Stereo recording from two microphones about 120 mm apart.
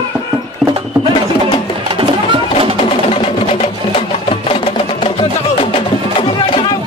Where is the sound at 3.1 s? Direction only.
55° left (ahead or behind).